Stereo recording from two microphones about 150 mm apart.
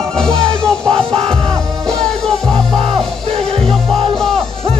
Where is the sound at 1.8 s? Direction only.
5° left (ahead or behind).